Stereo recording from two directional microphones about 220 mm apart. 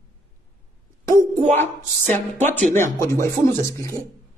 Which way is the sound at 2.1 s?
10° left (ahead or behind).